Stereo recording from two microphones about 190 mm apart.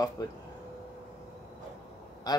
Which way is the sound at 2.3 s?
20° left (ahead or behind).